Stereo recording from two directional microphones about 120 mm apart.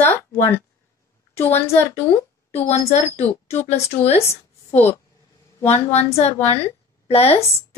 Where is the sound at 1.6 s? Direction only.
15° left (ahead or behind).